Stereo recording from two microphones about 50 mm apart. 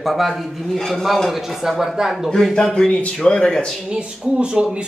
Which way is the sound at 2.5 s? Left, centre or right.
Centre.